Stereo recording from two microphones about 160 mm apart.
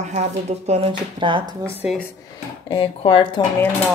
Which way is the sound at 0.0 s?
45° right (ahead or behind).